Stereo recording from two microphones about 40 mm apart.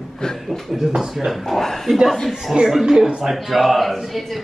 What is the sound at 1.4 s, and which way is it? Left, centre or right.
Speech, centre.